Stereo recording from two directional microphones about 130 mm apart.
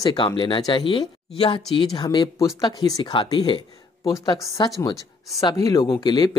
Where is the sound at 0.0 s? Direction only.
30° left (ahead or behind).